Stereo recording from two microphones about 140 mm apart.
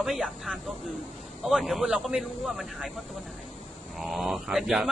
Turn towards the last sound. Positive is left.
turn(degrees=0)  # may be behind; listen again after turning